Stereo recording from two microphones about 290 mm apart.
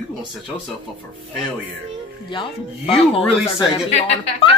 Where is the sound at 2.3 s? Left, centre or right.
Centre.